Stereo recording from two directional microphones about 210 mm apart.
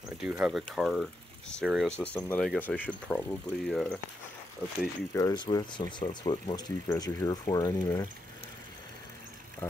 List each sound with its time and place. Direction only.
0.2 s speech: centre (ahead or behind)
5.1 s speech: 20° left (ahead or behind)